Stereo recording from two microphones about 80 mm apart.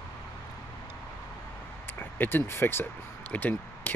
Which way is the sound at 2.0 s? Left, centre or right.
Left.